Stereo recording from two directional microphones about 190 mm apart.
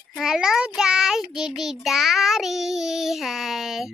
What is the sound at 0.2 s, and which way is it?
Child singing, centre (ahead or behind).